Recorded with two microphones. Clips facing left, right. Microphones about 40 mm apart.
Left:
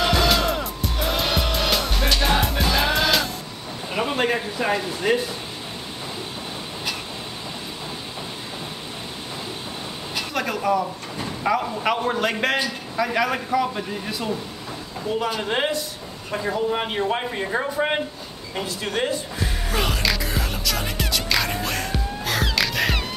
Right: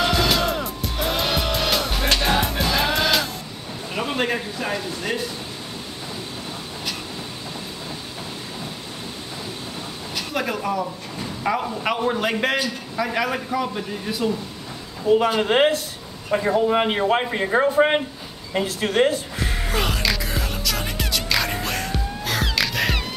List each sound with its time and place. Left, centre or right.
0.0 s music: centre
3.9 s a sound: centre
4.6 s speech: centre
10.3 s a man's voice: centre
15.2 s a man's voice: right
18.8 s speech: right
19.7 s music: centre